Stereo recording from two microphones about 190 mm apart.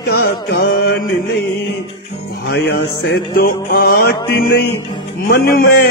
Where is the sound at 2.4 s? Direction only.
55° left (ahead or behind).